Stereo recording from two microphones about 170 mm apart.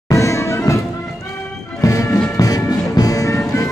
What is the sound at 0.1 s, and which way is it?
Music, 15° left (ahead or behind).